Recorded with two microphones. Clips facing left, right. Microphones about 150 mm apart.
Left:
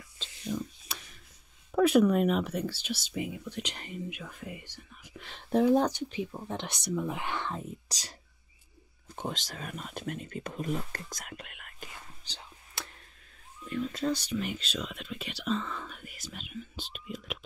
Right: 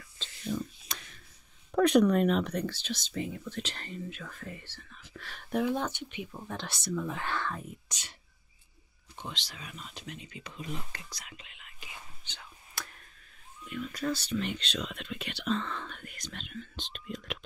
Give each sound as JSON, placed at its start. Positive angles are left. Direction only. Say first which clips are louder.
{"t": 0.2, "sound": "whispering", "louder": "even", "side_deg": 10}
{"t": 1.7, "sound": "speech", "louder": "even", "side_deg": 5}
{"t": 6.4, "sound": "speech", "louder": "left 2 dB", "side_deg": 20}
{"t": 7.9, "sound": "speech", "louder": "left 3 dB", "side_deg": 35}
{"t": 12.3, "sound": "whispering", "louder": "left 1 dB", "side_deg": 30}
{"t": 13.7, "sound": "speech", "louder": "left 5 dB", "side_deg": 30}
{"t": 14.0, "sound": "speech", "louder": "right 1 dB", "side_deg": 15}